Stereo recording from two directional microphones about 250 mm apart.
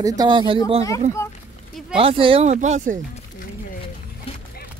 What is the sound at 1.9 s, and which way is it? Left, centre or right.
Speech, right.